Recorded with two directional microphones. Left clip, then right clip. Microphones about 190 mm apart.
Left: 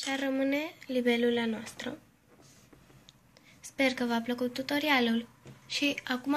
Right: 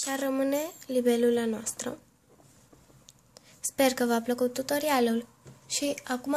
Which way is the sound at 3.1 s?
50° right (ahead or behind).